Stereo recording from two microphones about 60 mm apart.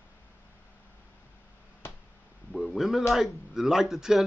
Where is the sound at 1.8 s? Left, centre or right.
Left.